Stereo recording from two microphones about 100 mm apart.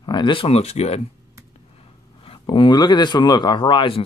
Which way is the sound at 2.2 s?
60° left (ahead or behind).